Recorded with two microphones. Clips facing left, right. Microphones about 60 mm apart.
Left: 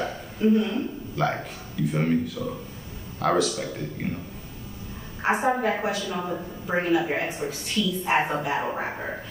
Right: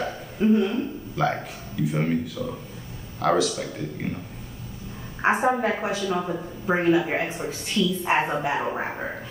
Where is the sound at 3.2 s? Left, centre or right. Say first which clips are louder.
Right 1 dB; centre.